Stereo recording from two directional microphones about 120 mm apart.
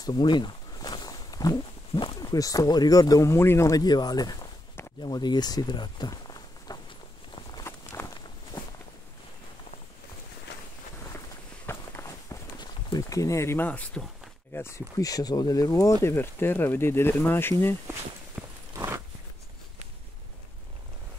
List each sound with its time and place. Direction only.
0.0 s speech: 40° left (ahead or behind)
7.6 s walk: 25° left (ahead or behind)
11.6 s walk: 20° left (ahead or behind)
12.5 s a sound: 30° left (ahead or behind); by 14.0 s 10° left (ahead or behind)
14.5 s speech: 20° left (ahead or behind)
18.4 s walk: centre (ahead or behind)
18.8 s a sound: 25° right (ahead or behind)